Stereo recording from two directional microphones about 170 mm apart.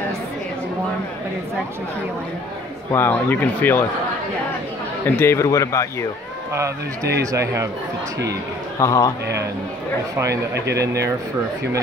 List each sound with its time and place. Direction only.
2.9 s speech: 10° left (ahead or behind)
5.0 s speech: 15° left (ahead or behind)
6.5 s a man's voice: 20° right (ahead or behind)
8.7 s a man's voice: 20° left (ahead or behind)
10.1 s a man's voice: 15° right (ahead or behind)
10.5 s speech: 75° right (ahead or behind)